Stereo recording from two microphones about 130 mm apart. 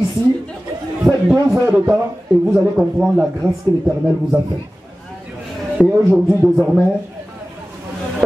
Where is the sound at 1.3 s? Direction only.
25° right (ahead or behind).